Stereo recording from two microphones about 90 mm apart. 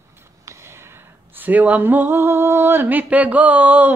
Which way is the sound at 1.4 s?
20° right (ahead or behind).